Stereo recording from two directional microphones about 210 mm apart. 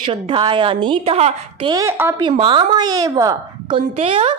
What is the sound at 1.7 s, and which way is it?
Speech, 10° right (ahead or behind).